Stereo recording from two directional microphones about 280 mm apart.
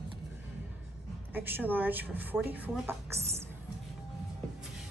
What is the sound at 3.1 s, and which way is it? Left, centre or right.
Music, right.